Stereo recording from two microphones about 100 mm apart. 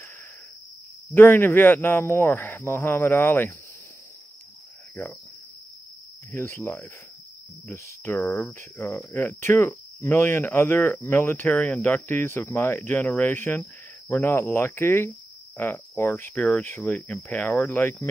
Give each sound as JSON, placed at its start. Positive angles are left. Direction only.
{"t": 1.1, "sound": "speech", "side_deg": 20}
{"t": 6.3, "sound": "speech", "side_deg": 25}
{"t": 8.3, "sound": "speech", "side_deg": 10}
{"t": 8.5, "sound": "speech", "side_deg": 25}